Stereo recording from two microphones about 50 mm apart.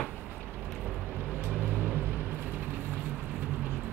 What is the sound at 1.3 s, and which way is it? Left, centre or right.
Vehicle, right.